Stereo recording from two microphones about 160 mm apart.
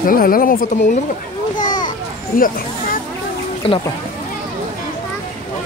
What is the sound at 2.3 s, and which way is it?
Speech, 60° left (ahead or behind).